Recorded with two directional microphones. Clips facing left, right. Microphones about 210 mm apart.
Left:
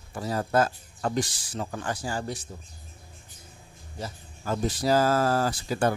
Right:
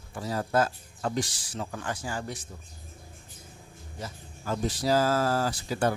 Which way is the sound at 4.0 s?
50° left (ahead or behind).